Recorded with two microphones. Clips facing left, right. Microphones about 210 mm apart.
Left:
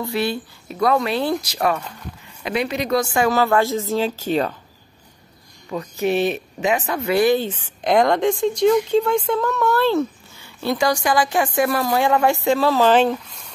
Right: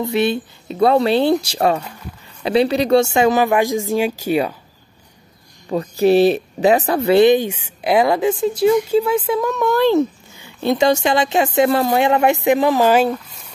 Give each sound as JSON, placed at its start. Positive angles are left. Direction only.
{"t": 0.0, "sound": "a woman's voice", "side_deg": -20}
{"t": 5.7, "sound": "speech", "side_deg": -35}
{"t": 7.3, "sound": "a woman's voice", "side_deg": -10}